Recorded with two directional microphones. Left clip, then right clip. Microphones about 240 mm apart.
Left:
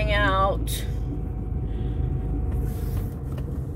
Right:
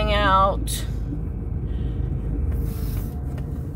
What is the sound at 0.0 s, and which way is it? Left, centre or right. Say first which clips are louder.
Music: right 4 dB; centre.